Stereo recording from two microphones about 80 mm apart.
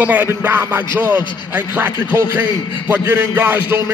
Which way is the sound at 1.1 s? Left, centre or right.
Left.